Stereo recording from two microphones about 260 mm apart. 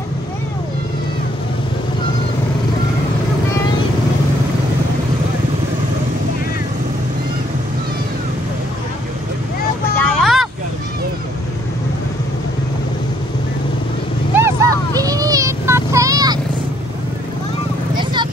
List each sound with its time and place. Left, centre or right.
9.9 s vehicle: centre
14.3 s a sound: centre
17.9 s vehicle: centre